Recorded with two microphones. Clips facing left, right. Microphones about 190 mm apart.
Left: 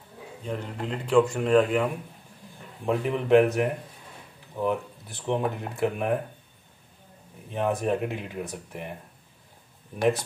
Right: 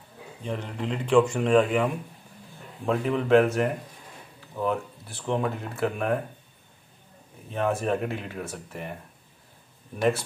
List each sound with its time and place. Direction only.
0.5 s speech: centre (ahead or behind)
2.9 s speech: 15° left (ahead or behind)
7.5 s speech: 15° left (ahead or behind)